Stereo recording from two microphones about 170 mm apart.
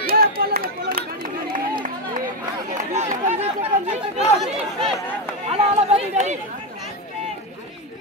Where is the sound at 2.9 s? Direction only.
40° right (ahead or behind).